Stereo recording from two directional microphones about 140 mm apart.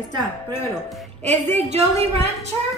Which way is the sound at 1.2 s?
50° right (ahead or behind).